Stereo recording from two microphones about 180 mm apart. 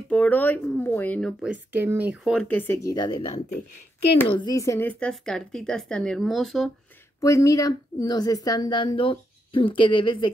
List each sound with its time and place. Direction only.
0.1 s speech: 10° left (ahead or behind)
1.4 s speech: 10° right (ahead or behind)
2.3 s speech: 10° left (ahead or behind)
7.2 s a woman's voice: 20° left (ahead or behind)